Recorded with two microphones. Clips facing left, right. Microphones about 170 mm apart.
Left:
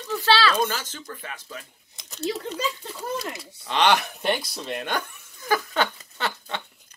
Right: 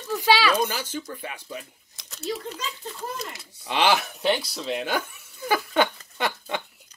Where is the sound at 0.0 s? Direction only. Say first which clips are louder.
Even; 10° right (ahead or behind).